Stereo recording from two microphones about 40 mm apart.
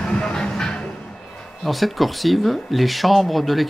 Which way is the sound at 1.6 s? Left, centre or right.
Centre.